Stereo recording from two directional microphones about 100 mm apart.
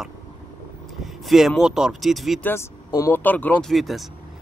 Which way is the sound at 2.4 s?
25° left (ahead or behind).